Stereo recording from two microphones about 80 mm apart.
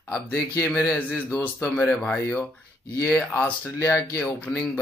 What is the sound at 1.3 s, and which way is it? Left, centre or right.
Speech, left.